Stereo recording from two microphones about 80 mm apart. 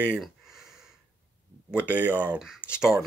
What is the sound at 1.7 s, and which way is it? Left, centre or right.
Speech, centre.